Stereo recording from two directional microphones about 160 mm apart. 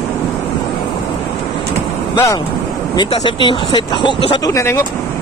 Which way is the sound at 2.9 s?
30° left (ahead or behind).